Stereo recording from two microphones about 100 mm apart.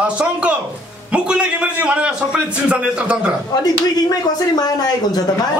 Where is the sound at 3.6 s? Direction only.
40° left (ahead or behind).